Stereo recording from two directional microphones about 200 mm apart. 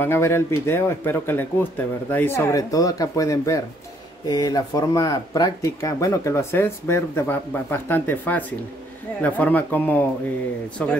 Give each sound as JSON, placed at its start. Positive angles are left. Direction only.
{"t": 0.0, "sound": "speech", "side_deg": 10}